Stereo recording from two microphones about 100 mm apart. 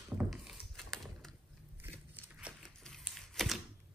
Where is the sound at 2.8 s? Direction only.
5° left (ahead or behind).